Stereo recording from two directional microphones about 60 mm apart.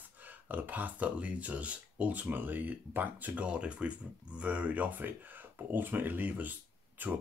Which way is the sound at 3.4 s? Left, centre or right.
Centre.